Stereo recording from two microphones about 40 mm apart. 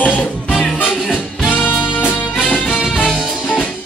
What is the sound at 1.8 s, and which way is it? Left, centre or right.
Music, centre.